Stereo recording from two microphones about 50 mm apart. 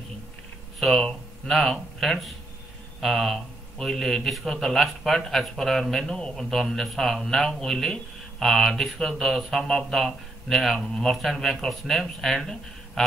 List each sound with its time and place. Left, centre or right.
0.7 s speech: centre